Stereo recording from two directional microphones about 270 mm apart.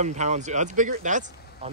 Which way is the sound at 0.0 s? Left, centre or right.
Right.